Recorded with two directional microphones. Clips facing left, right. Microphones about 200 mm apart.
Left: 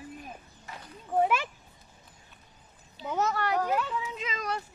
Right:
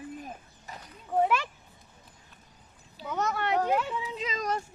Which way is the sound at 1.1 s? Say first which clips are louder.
Even; centre (ahead or behind).